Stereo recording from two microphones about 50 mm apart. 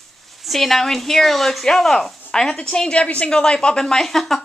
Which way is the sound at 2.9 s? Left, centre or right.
Left.